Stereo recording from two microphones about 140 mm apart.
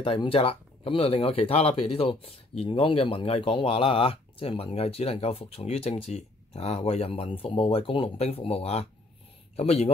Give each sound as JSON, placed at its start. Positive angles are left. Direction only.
{"t": 0.0, "sound": "speech", "side_deg": 40}